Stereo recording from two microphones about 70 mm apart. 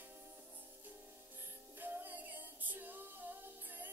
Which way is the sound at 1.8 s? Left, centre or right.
Right.